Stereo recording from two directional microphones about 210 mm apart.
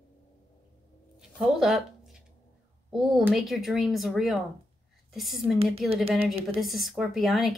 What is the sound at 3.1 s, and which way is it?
A woman's voice, centre (ahead or behind).